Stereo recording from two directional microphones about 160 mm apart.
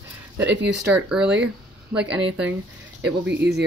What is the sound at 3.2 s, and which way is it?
Speech, 90° right.